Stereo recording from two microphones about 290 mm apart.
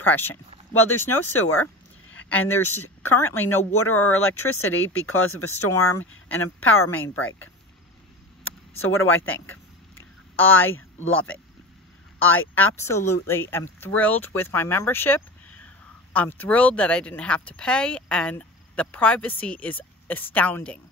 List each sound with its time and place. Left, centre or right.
0.0 s speech: centre
0.7 s speech: left
3.3 s speech: left
8.5 s a sound: left
11.1 s speech: left
12.7 s speech: centre